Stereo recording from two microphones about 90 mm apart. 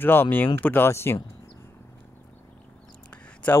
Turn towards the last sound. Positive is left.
turn(degrees=15)  # may be behind; listen again after turning